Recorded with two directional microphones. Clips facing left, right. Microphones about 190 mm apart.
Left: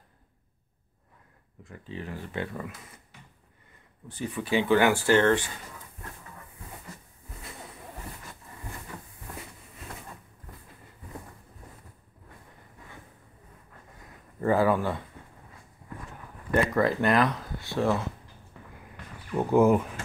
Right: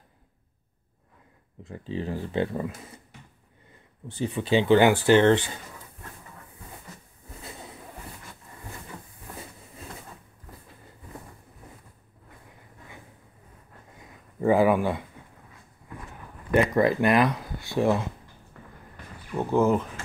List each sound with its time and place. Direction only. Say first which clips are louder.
1.6 s speech: right 7 dB; 30° right (ahead or behind)
4.1 s speech: right 4 dB; 25° right (ahead or behind)
13.9 s a sound: right 4 dB; 15° right (ahead or behind)
16.5 s speech: right 3 dB; 15° right (ahead or behind)
19.3 s speech: left 1 dB; 10° left (ahead or behind)